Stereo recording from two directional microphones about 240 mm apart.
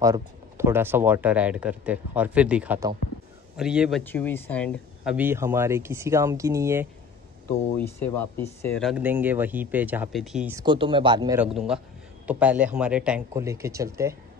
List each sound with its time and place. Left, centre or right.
0.0 s speech: centre
4.0 s speech: centre
5.1 s speech: centre
7.4 s speech: centre
10.6 s speech: centre
11.3 s speech: centre